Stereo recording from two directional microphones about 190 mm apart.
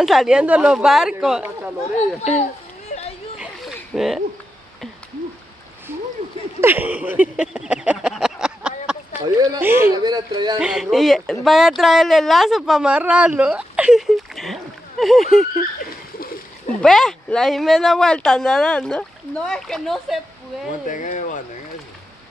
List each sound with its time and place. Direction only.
0.0 s speech: centre (ahead or behind)
2.0 s speech: 35° left (ahead or behind)
3.3 s a sound: centre (ahead or behind)
6.2 s a sound: 35° right (ahead or behind)
6.6 s a sound: 10° right (ahead or behind)
9.2 s speech: 20° right (ahead or behind)
10.0 s speech: 20° right (ahead or behind)
10.6 s speech: 5° right (ahead or behind)
15.8 s splash: 50° left (ahead or behind)
16.8 s speech: 5° left (ahead or behind)
20.9 s speech: 40° left (ahead or behind)